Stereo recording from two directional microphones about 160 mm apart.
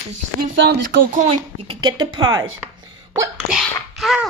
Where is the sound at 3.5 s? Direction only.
Centre (ahead or behind).